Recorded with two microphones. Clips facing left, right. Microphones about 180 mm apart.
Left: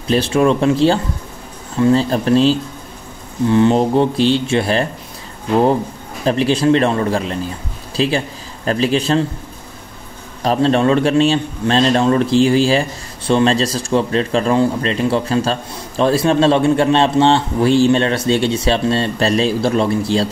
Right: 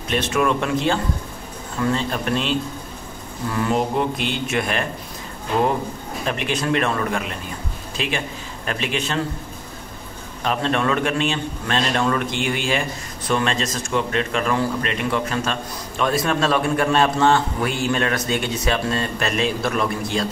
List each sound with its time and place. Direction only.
0.0 s a man's voice: 30° left (ahead or behind)
6.2 s a man's voice: 30° left (ahead or behind)
10.4 s a man's voice: 35° left (ahead or behind)